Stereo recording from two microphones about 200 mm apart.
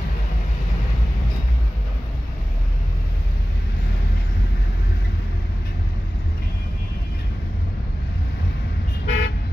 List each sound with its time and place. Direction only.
9.0 s car: 60° left (ahead or behind)